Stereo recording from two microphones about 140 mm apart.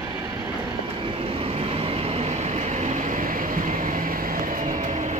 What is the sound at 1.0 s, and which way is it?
Vehicle, 40° right (ahead or behind).